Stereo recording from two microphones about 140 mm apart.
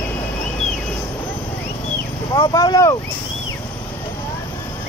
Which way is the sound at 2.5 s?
25° left (ahead or behind).